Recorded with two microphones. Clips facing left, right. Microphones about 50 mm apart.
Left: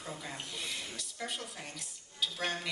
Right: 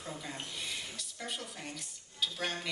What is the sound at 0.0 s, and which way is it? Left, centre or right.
Speech, centre.